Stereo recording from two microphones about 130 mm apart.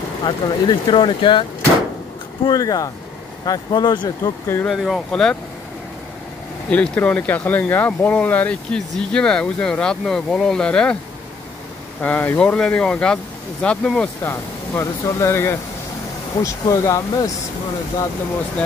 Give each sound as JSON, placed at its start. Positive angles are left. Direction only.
{"t": 0.2, "sound": "speech", "side_deg": 35}
{"t": 2.4, "sound": "speech", "side_deg": 30}
{"t": 4.6, "sound": "speech", "side_deg": 0}
{"t": 6.7, "sound": "speech", "side_deg": 10}
{"t": 12.0, "sound": "speech", "side_deg": 10}
{"t": 14.2, "sound": "speech", "side_deg": 20}